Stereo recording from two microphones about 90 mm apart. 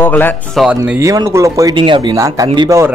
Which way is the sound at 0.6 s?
Centre (ahead or behind).